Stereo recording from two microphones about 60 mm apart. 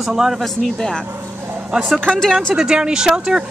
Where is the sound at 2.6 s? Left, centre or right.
Centre.